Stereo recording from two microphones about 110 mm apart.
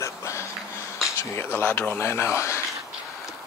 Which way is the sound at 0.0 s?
25° left (ahead or behind).